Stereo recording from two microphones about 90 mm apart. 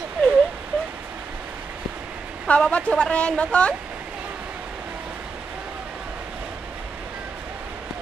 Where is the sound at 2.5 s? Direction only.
15° left (ahead or behind).